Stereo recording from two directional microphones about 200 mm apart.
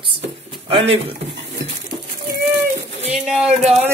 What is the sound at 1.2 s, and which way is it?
Dishes, 60° right (ahead or behind).